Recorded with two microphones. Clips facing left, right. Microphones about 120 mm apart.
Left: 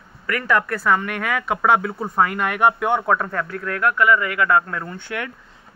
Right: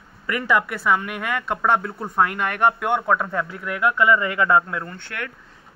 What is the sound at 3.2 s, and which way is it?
A man's voice, 10° right (ahead or behind).